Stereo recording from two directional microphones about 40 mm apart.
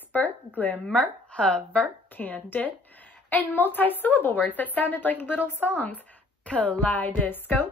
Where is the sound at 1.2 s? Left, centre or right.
Left.